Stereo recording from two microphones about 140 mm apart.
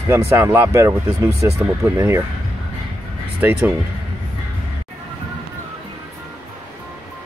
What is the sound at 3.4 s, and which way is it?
Speech, 15° right (ahead or behind).